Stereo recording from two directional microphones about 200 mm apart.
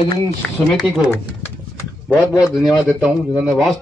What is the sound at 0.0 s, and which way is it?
Speech, 30° left (ahead or behind).